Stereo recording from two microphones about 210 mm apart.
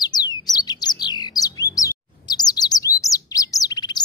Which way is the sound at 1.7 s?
20° left (ahead or behind).